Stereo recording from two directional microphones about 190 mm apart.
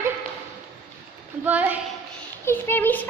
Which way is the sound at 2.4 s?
10° left (ahead or behind).